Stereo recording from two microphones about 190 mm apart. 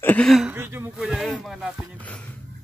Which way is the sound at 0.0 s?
5° left (ahead or behind).